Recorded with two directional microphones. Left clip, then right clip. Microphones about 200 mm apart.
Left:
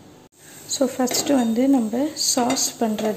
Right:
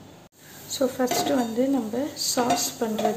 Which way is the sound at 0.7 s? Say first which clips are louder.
Left 2 dB; 25° left (ahead or behind).